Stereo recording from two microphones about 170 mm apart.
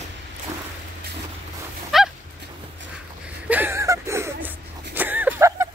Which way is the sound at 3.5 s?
15° right (ahead or behind).